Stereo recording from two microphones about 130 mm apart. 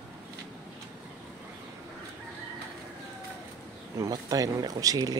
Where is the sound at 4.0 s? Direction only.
30° right (ahead or behind).